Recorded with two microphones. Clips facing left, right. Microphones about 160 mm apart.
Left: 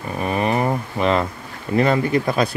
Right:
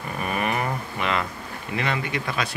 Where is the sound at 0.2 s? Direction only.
30° left (ahead or behind).